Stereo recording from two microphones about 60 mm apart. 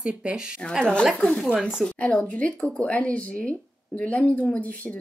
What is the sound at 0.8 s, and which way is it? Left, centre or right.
Speech, centre.